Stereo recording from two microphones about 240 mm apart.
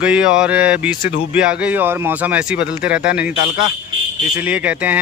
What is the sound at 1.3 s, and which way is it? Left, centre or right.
Speech, centre.